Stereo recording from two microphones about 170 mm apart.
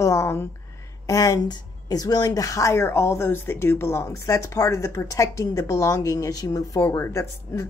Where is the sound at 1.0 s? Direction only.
20° left (ahead or behind).